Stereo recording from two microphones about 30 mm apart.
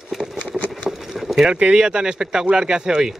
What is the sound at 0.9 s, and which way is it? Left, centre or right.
Clip-clop, right.